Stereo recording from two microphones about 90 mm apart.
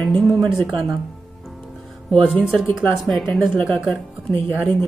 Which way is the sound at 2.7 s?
5° left (ahead or behind).